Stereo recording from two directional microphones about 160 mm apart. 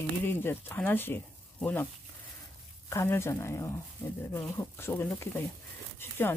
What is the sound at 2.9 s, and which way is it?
Speech, 15° left (ahead or behind).